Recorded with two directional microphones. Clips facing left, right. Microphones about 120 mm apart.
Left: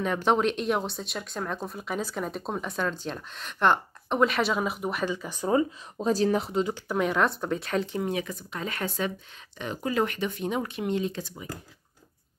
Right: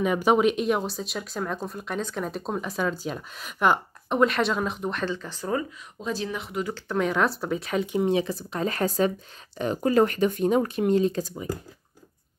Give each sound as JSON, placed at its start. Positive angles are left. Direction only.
{"t": 0.0, "sound": "speech", "side_deg": -10}
{"t": 5.9, "sound": "speech", "side_deg": 40}
{"t": 6.9, "sound": "speech", "side_deg": 0}
{"t": 7.9, "sound": "speech", "side_deg": -25}